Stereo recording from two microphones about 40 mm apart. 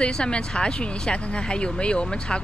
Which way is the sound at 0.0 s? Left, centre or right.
Left.